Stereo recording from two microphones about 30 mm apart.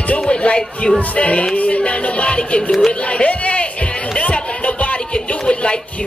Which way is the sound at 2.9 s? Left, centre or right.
Left.